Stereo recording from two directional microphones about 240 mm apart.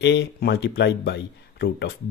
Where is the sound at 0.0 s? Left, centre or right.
Left.